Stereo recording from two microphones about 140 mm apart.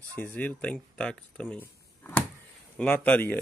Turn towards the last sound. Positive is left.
turn(degrees=10)  # may be behind; listen again after turning